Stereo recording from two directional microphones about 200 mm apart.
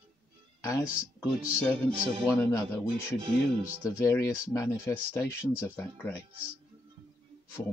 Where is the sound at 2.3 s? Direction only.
15° left (ahead or behind).